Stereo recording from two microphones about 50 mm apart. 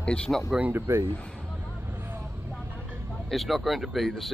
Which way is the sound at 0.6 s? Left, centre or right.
Right.